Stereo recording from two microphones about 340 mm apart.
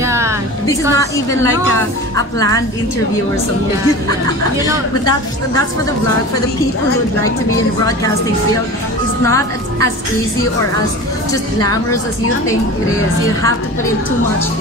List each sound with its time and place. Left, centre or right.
0.0 s music: centre
0.7 s a woman's voice: centre
9.2 s a woman's voice: centre
11.6 s a woman's voice: centre